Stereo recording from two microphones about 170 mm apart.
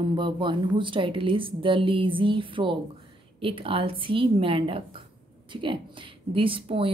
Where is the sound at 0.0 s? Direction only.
30° right (ahead or behind).